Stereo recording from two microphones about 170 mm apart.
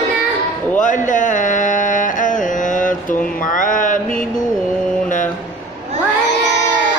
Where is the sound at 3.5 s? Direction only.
50° left (ahead or behind).